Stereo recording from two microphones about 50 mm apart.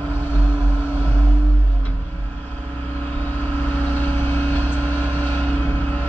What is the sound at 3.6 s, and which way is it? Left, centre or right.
Vehicle, left.